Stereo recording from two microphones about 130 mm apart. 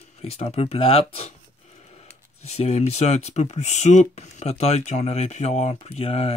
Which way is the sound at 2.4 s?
55° left (ahead or behind).